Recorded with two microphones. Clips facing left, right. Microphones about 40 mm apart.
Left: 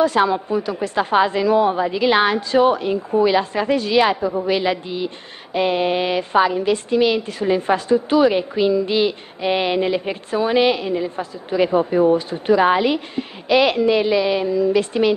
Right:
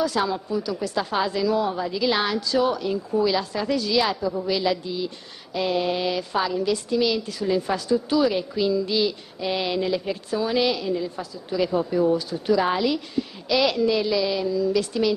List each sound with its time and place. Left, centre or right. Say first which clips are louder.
0.0 s a woman's voice: left 7 dB; left